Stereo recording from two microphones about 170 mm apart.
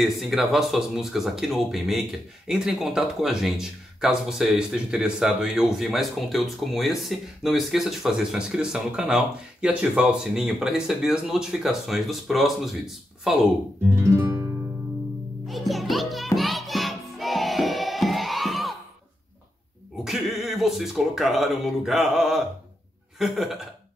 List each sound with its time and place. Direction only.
0.0 s speech: centre (ahead or behind)
13.9 s guitar: 15° right (ahead or behind)
15.4 s music: centre (ahead or behind)
20.1 s speech: centre (ahead or behind)